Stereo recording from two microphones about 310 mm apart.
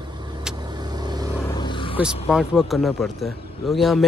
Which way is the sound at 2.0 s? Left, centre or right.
Centre.